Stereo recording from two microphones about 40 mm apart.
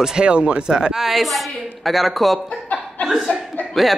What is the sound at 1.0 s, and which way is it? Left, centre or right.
A woman's voice, centre.